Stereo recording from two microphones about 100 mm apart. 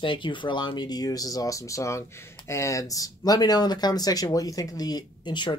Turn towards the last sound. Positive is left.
turn(degrees=50)  # may be behind; listen again after turning